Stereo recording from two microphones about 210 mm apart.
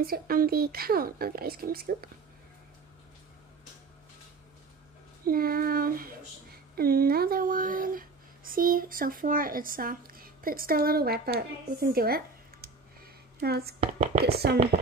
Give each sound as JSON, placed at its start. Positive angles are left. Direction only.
{"t": 0.0, "sound": "speech", "side_deg": -45}
{"t": 5.2, "sound": "speech", "side_deg": -45}
{"t": 13.4, "sound": "speech", "side_deg": -50}
{"t": 13.7, "sound": "speech", "side_deg": -30}
{"t": 14.2, "sound": "speech", "side_deg": -50}